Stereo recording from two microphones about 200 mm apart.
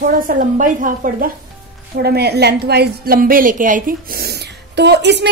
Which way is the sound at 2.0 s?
55° right (ahead or behind).